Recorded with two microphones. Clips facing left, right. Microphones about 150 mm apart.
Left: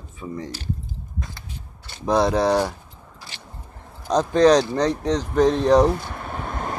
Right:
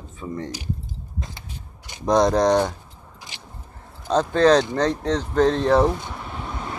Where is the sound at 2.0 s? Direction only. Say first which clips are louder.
Right 1 dB; 5° left (ahead or behind).